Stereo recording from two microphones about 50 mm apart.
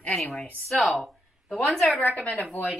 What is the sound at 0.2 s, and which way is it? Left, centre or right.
Speech, centre.